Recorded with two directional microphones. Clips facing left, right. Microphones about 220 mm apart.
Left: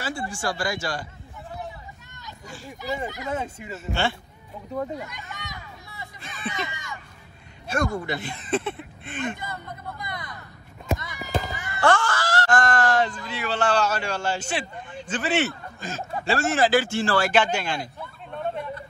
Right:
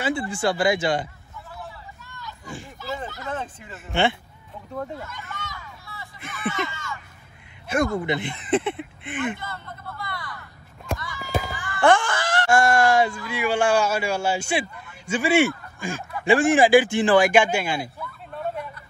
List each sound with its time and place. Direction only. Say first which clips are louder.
0.0 s speech: right 6 dB; 20° right (ahead or behind)
2.4 s speech: right 3 dB; 20° right (ahead or behind)
2.8 s speech: left 3 dB; 15° left (ahead or behind)
4.9 s a sound: even; 15° left (ahead or behind)
6.3 s speech: right 4 dB; 20° left (ahead or behind)
7.6 s speech: right 3 dB; 20° right (ahead or behind)
9.4 s speech: left 1 dB; 15° left (ahead or behind)
11.0 s run: right 1 dB; 20° left (ahead or behind)
11.4 s music: right 1 dB; 20° left (ahead or behind)
11.8 s speech: right 3 dB; 15° right (ahead or behind)